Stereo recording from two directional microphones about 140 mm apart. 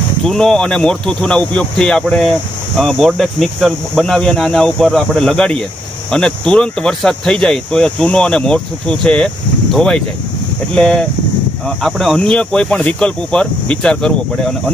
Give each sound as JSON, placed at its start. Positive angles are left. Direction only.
{"t": 0.3, "sound": "speech", "side_deg": 5}